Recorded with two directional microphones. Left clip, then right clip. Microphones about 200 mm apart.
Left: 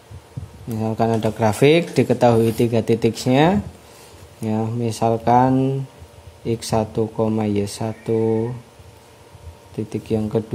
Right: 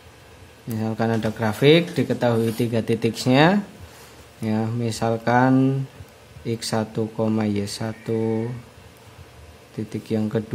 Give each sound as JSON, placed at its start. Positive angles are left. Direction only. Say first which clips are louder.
{"t": 0.7, "sound": "speech", "louder": "left 4 dB", "side_deg": 15}
{"t": 1.4, "sound": "speech", "louder": "left 1 dB", "side_deg": 25}
{"t": 9.8, "sound": "speech", "louder": "left 3 dB", "side_deg": 15}